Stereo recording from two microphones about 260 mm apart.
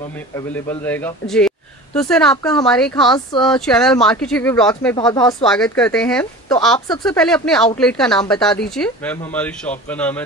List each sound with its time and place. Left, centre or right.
0.5 s speech: centre
4.9 s speech: centre
5.4 s speech: centre